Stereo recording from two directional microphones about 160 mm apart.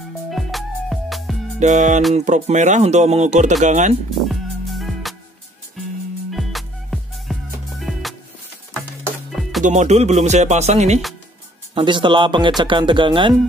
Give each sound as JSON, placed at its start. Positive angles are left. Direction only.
{"t": 0.3, "sound": "music", "side_deg": 0}
{"t": 1.6, "sound": "speech", "side_deg": -50}
{"t": 4.3, "sound": "music", "side_deg": 0}
{"t": 6.3, "sound": "music", "side_deg": 0}
{"t": 9.6, "sound": "speech", "side_deg": -45}
{"t": 11.7, "sound": "speech", "side_deg": -30}